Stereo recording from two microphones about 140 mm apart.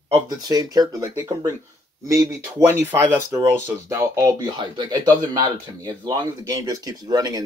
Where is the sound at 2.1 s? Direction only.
20° right (ahead or behind).